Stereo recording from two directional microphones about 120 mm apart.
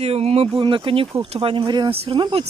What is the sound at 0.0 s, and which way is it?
Speech, 60° right (ahead or behind).